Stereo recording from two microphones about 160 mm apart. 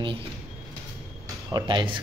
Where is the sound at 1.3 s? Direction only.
25° right (ahead or behind).